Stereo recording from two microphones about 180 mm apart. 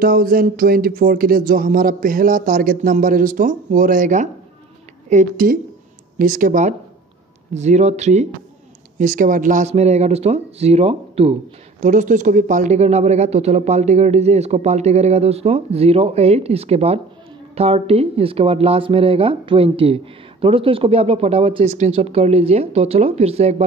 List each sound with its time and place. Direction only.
0.0 s speech: 55° right (ahead or behind); by 23.6 s 35° right (ahead or behind)